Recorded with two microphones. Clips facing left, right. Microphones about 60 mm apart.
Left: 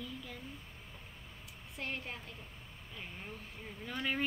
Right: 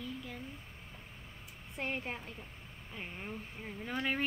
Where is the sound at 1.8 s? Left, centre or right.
Right.